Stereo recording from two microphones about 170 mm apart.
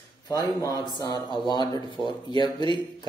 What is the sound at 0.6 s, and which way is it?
Speech, 20° left (ahead or behind).